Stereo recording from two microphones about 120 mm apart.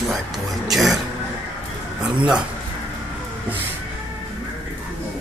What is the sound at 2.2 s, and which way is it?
Speech, 10° right (ahead or behind).